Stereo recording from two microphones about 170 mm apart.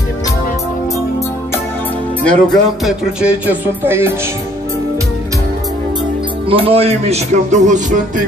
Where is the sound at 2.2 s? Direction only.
5° left (ahead or behind); by 4.1 s 15° right (ahead or behind).